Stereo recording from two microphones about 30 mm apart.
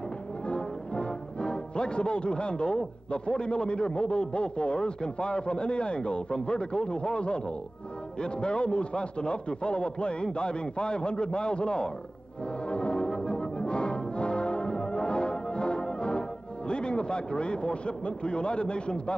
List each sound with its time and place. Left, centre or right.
0.5 s music: left
3.1 s a man's voice: left
12.6 s brass instrument: left